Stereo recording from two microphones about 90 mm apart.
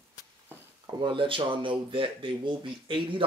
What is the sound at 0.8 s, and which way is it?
Speech, 55° right (ahead or behind).